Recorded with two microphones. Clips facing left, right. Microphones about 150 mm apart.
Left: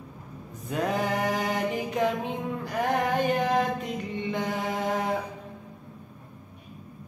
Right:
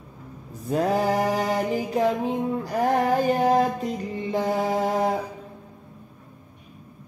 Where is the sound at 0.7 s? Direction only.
35° right (ahead or behind).